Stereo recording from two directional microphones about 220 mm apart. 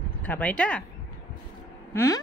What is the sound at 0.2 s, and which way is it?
Speech, 5° left (ahead or behind).